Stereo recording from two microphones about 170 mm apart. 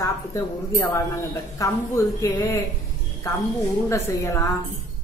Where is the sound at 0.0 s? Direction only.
15° left (ahead or behind).